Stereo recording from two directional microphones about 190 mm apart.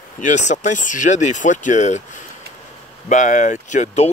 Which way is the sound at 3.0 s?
40° left (ahead or behind).